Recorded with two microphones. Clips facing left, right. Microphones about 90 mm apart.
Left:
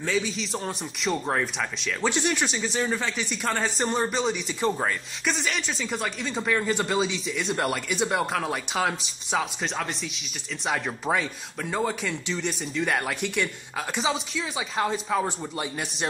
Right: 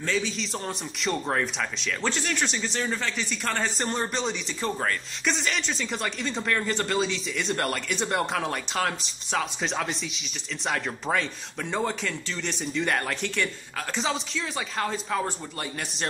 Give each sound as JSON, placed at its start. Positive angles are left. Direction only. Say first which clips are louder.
{"t": 0.0, "sound": "speech", "louder": "left 1 dB", "side_deg": 5}
{"t": 2.0, "sound": "speech", "louder": "left 4 dB", "side_deg": 15}
{"t": 2.4, "sound": "speech", "louder": "left 2 dB", "side_deg": 5}
{"t": 5.3, "sound": "speech", "louder": "even", "side_deg": 0}